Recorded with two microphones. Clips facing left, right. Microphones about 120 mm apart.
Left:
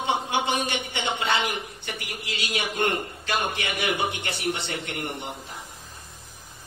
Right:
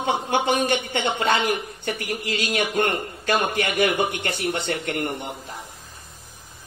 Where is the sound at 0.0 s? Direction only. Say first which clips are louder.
Right 3 dB; 50° right (ahead or behind).